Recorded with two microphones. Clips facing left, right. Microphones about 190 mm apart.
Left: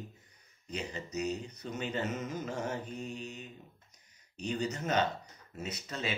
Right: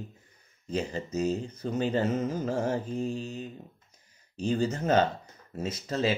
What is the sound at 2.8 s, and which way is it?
Mantra, 90° right.